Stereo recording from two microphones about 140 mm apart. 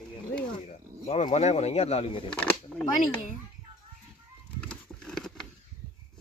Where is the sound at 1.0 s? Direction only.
55° left (ahead or behind).